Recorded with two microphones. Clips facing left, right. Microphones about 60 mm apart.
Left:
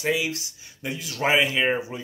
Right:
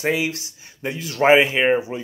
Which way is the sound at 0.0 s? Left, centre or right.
Right.